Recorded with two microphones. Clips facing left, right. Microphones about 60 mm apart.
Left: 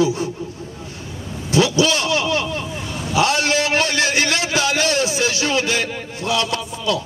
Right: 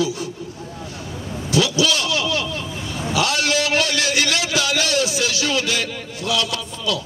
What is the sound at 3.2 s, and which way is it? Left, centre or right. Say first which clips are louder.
A man's voice: left 3 dB; left.